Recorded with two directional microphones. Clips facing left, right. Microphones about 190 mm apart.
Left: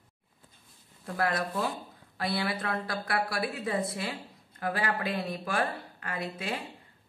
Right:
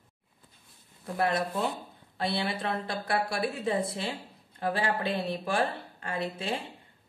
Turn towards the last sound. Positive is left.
turn(degrees=-25)  # may be behind; listen again after turning